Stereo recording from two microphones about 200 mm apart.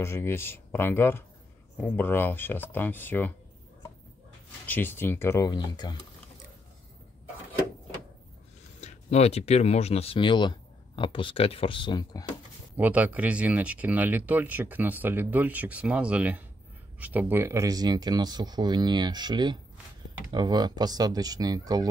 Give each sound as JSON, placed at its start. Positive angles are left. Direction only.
{"t": 0.0, "sound": "speech", "side_deg": 10}
{"t": 4.6, "sound": "speech", "side_deg": 10}
{"t": 8.8, "sound": "speech", "side_deg": 30}
{"t": 12.7, "sound": "speech", "side_deg": -10}